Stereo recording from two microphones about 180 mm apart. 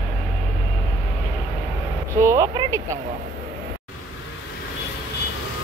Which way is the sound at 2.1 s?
15° right (ahead or behind).